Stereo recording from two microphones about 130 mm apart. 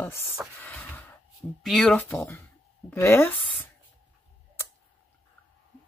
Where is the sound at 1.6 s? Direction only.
5° left (ahead or behind).